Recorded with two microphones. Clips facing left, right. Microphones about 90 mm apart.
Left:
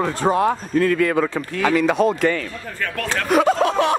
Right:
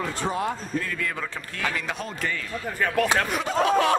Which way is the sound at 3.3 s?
60° left (ahead or behind).